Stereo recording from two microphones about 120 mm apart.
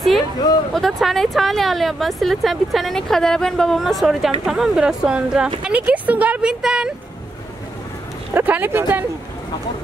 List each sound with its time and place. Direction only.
0.7 s speech: centre (ahead or behind)
8.4 s speech: 15° right (ahead or behind)